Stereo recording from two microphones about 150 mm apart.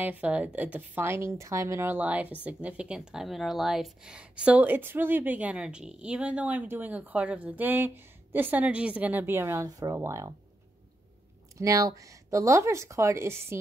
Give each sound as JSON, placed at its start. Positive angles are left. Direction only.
{"t": 0.0, "sound": "speech", "side_deg": -10}
{"t": 11.5, "sound": "speech", "side_deg": -20}